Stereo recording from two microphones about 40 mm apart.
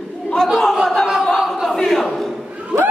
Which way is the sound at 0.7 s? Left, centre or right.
Centre.